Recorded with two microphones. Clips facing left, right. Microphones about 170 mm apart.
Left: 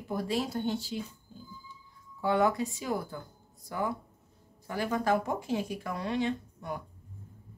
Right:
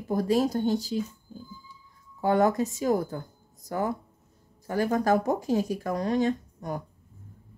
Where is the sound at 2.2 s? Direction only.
45° right (ahead or behind).